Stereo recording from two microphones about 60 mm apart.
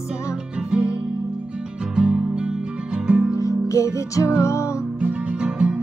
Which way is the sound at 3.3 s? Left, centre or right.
Left.